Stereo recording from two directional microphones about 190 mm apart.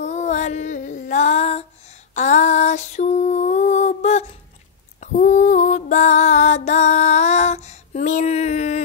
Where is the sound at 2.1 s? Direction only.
40° left (ahead or behind).